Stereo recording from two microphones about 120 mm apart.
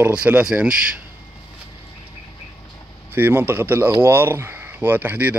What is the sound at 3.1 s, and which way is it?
Speech, 20° right (ahead or behind).